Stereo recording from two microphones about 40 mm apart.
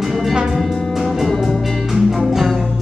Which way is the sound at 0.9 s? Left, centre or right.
Centre.